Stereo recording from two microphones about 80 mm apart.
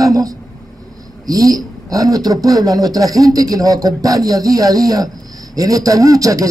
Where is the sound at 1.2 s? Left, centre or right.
Right.